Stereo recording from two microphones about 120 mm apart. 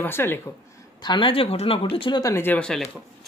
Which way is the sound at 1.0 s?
45° left (ahead or behind).